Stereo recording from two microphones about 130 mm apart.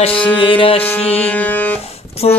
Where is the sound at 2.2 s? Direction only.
50° left (ahead or behind).